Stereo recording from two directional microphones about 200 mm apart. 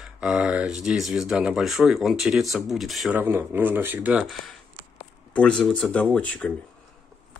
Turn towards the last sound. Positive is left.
turn(degrees=5)  # may be behind; listen again after turning